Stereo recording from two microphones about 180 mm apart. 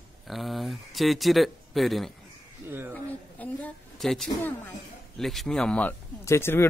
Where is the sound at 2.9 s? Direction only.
10° left (ahead or behind).